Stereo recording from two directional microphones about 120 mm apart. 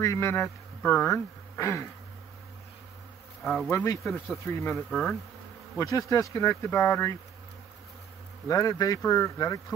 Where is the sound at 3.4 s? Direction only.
Centre (ahead or behind).